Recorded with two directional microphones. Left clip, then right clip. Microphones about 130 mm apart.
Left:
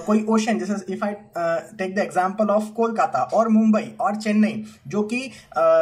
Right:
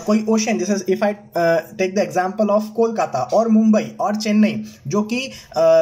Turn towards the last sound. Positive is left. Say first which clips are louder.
# right 3 dB
turn(degrees=-15)  # may be behind; listen again after turning